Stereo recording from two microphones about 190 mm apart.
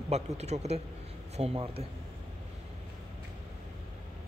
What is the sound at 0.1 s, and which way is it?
A man's voice, 35° right (ahead or behind).